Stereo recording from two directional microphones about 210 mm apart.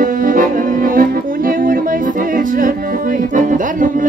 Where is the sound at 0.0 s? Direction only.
40° right (ahead or behind).